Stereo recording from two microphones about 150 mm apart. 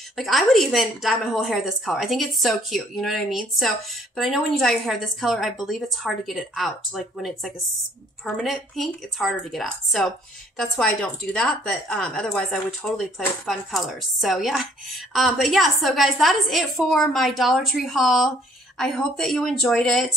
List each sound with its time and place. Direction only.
0.1 s a woman's voice: centre (ahead or behind)